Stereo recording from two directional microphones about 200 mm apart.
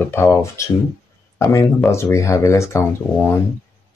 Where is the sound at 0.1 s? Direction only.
10° left (ahead or behind).